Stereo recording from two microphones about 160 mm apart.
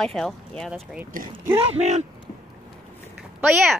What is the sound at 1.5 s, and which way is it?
Speech, 40° right (ahead or behind).